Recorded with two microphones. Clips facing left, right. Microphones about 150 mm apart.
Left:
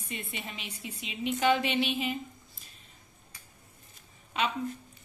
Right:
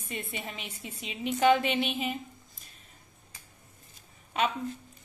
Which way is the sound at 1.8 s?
Centre (ahead or behind).